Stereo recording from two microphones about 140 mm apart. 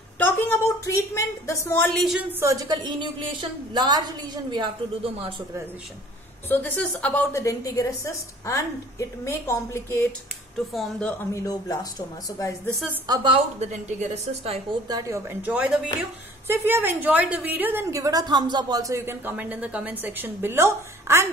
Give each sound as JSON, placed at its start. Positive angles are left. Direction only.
{"t": 0.2, "sound": "a woman's voice", "side_deg": 15}
{"t": 2.4, "sound": "a woman's voice", "side_deg": -25}
{"t": 6.5, "sound": "a woman's voice", "side_deg": 10}
{"t": 10.7, "sound": "speech", "side_deg": 5}
{"t": 11.3, "sound": "a woman's voice", "side_deg": 25}
{"t": 13.0, "sound": "a woman's voice", "side_deg": -30}
{"t": 13.3, "sound": "a woman's voice", "side_deg": -55}
{"t": 14.9, "sound": "a woman's voice", "side_deg": -25}
{"t": 15.5, "sound": "a woman's voice", "side_deg": -10}